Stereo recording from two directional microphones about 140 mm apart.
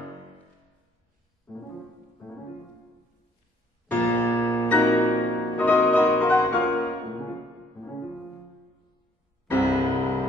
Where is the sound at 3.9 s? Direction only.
10° left (ahead or behind).